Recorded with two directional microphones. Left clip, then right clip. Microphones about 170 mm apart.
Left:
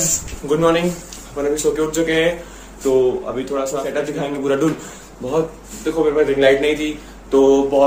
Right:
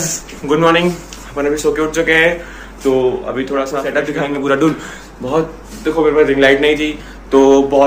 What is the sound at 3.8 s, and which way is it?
A man's voice, 5° left (ahead or behind).